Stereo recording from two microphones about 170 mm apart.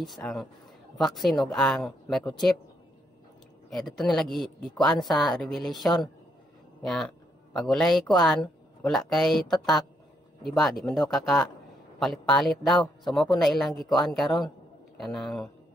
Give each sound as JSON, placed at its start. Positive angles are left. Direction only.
{"t": 0.0, "sound": "speech", "side_deg": 0}
{"t": 3.7, "sound": "speech", "side_deg": 0}
{"t": 10.4, "sound": "speech", "side_deg": 0}